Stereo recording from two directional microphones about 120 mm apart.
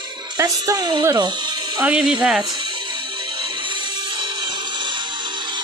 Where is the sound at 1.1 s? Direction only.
40° right (ahead or behind).